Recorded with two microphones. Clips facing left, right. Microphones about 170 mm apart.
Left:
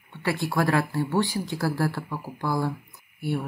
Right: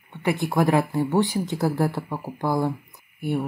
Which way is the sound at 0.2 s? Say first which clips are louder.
Right 3 dB; 20° right (ahead or behind).